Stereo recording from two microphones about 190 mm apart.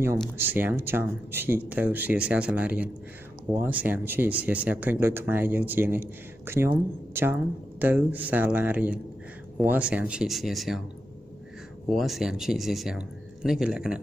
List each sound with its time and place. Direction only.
0.0 s speech: 10° right (ahead or behind)
11.9 s speech: centre (ahead or behind)